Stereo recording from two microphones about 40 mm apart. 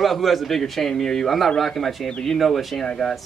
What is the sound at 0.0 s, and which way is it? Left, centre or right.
Speech, centre.